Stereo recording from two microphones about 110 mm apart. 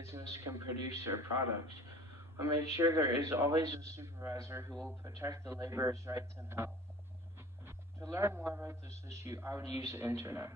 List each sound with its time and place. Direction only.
0.0 s a man's voice: 25° right (ahead or behind)
2.3 s a man's voice: 25° right (ahead or behind)
8.1 s a man's voice: 25° right (ahead or behind)